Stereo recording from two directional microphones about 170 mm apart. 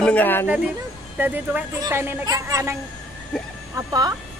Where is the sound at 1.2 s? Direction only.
10° right (ahead or behind).